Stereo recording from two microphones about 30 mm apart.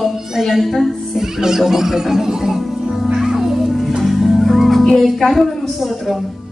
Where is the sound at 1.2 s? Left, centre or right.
Centre.